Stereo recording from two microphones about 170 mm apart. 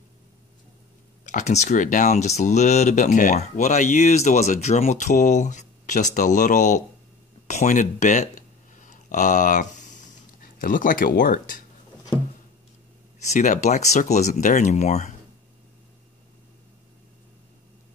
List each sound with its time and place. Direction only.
1.2 s speech: 45° left (ahead or behind)
7.4 s a sound: 45° left (ahead or behind)
10.6 s speech: 55° left (ahead or behind)
13.2 s speech: 45° left (ahead or behind)